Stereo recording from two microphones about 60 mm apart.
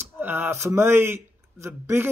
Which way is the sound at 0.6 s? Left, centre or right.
Right.